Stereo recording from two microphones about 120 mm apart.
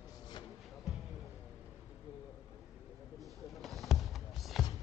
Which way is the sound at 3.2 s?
Centre (ahead or behind).